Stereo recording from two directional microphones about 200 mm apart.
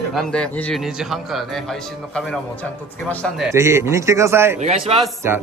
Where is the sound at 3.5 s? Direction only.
15° right (ahead or behind).